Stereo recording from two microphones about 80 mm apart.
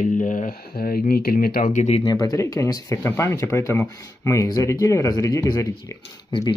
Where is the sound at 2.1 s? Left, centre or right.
Left.